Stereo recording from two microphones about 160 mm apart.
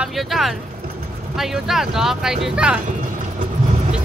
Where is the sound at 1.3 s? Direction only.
Centre (ahead or behind).